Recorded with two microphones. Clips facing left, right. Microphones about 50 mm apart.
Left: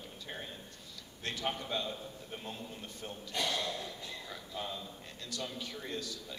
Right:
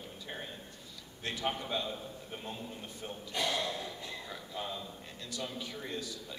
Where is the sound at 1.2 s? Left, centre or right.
Centre.